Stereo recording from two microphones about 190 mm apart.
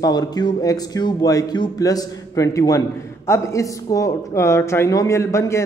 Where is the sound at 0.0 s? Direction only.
20° left (ahead or behind).